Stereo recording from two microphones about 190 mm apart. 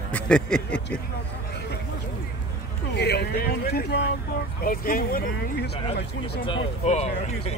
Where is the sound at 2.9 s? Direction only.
60° left (ahead or behind).